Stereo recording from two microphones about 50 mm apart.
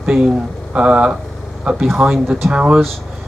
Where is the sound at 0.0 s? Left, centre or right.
Centre.